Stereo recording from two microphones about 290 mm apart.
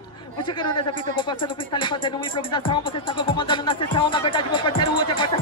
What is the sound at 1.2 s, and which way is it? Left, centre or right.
Music, centre.